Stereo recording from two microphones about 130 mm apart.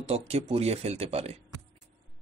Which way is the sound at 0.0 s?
50° right (ahead or behind).